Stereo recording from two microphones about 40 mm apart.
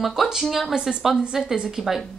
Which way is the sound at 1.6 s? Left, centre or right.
Centre.